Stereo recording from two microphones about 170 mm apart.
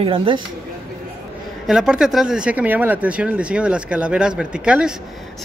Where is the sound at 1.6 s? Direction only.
5° right (ahead or behind).